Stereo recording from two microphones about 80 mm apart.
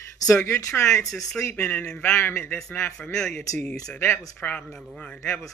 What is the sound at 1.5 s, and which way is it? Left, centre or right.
Mantra, left.